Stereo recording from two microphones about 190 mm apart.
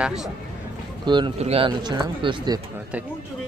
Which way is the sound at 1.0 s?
25° right (ahead or behind).